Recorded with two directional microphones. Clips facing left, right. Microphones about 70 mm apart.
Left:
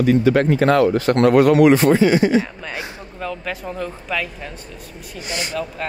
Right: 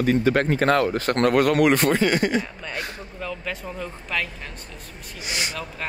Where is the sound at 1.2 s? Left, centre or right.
Left.